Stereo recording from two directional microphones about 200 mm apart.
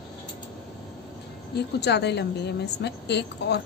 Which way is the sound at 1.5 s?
55° left (ahead or behind).